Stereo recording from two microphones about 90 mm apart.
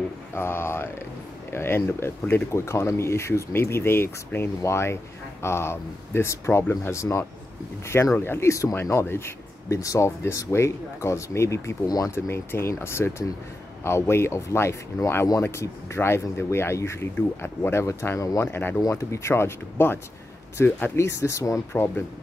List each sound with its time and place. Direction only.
0.3 s speech: 25° left (ahead or behind)